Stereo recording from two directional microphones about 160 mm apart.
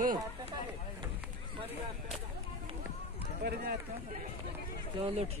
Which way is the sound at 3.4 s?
90° right.